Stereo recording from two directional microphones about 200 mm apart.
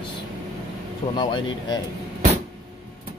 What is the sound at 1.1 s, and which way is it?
Speech, 20° left (ahead or behind).